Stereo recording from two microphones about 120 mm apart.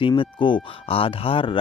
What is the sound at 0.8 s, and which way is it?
Speech, 50° left (ahead or behind).